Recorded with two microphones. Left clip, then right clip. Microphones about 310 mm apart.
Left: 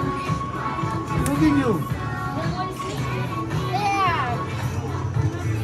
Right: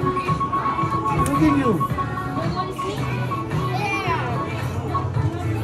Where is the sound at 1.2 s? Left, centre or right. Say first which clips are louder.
Left 2 dB; centre.